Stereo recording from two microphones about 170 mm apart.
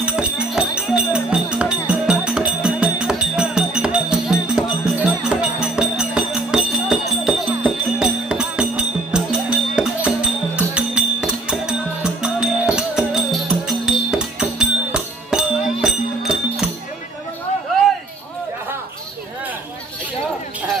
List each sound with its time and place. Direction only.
0.0 s music: 5° right (ahead or behind)